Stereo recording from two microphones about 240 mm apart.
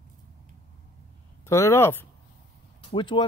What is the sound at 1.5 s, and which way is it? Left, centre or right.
Speech, centre.